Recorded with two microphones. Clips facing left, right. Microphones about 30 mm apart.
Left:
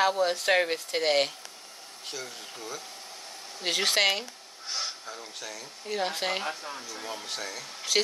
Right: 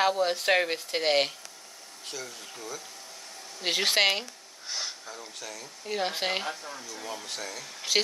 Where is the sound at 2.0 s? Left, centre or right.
Centre.